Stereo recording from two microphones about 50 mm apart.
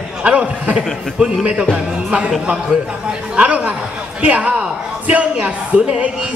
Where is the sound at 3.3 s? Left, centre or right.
Right.